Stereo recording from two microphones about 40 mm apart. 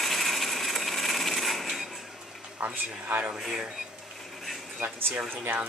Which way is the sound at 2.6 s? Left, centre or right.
Right.